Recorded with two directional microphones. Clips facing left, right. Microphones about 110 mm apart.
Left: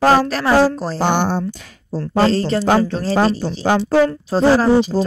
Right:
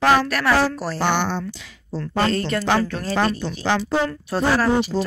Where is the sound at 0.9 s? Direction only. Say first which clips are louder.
Left 4 dB; 45° left (ahead or behind).